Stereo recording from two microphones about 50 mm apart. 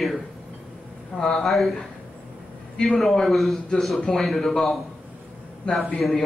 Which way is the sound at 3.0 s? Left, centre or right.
Centre.